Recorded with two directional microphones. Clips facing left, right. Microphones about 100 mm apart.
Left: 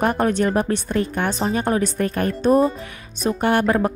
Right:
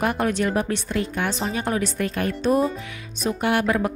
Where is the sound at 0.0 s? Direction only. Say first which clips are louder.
Left 3 dB; 45° left (ahead or behind).